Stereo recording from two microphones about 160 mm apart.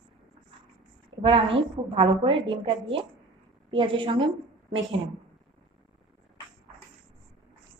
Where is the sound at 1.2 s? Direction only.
35° right (ahead or behind).